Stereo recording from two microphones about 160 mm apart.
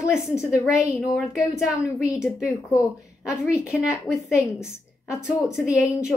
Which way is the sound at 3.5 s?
20° left (ahead or behind).